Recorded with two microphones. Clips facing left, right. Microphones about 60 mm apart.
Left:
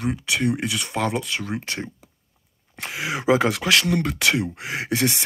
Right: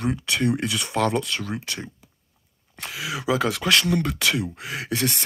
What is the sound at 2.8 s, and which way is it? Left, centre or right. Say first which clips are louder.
Speech: left 4 dB; left.